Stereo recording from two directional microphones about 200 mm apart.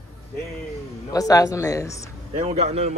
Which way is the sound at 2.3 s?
30° right (ahead or behind).